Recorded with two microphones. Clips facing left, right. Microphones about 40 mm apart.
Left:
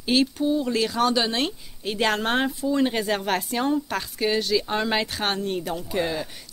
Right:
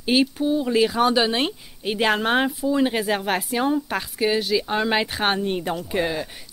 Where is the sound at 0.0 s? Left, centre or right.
Centre.